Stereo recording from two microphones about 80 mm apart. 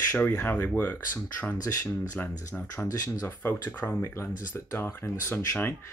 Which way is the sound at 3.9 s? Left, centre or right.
Left.